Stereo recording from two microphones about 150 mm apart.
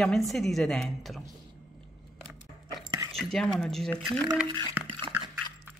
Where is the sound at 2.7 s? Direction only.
25° right (ahead or behind).